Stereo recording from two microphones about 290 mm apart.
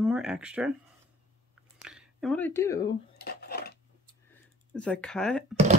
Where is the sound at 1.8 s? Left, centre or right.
Centre.